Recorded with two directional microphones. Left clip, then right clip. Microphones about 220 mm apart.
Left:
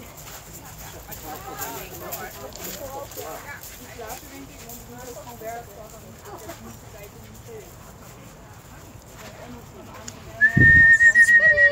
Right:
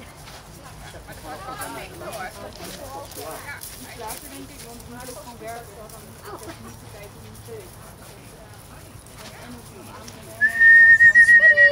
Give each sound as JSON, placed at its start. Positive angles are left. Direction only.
{"t": 10.0, "sound": "whistling", "side_deg": 5}
{"t": 11.2, "sound": "whistling", "side_deg": 45}